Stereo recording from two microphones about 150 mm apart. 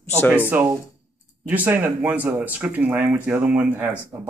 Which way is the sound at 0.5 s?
10° right (ahead or behind).